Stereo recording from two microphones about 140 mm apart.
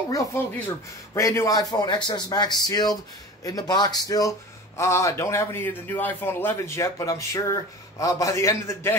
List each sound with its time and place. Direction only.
0.1 s a man's voice: 25° left (ahead or behind)